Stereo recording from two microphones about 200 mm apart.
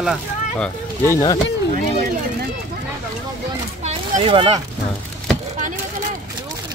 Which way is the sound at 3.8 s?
30° right (ahead or behind).